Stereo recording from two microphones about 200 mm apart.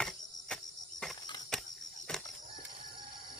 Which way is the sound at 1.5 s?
5° left (ahead or behind).